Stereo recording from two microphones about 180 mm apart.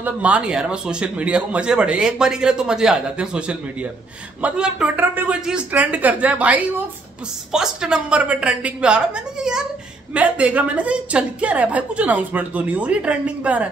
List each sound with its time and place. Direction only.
0.0 s a woman's voice: 5° right (ahead or behind)